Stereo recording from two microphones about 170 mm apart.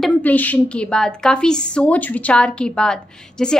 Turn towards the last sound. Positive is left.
turn(degrees=5)  # may be behind; listen again after turning